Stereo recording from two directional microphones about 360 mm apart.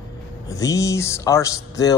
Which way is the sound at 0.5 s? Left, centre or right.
Centre.